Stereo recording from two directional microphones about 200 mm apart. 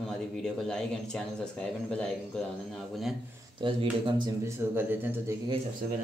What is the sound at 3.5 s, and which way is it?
Speech, 25° right (ahead or behind).